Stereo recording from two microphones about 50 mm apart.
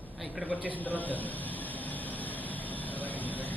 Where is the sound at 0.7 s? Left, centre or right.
Left.